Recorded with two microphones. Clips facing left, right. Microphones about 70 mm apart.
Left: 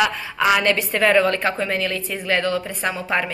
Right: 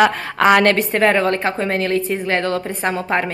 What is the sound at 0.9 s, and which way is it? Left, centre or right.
A woman's voice, right.